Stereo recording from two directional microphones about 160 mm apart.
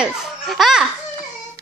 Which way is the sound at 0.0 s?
5° right (ahead or behind).